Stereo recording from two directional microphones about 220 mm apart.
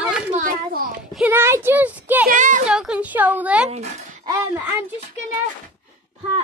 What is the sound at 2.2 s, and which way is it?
Speech, 35° right (ahead or behind).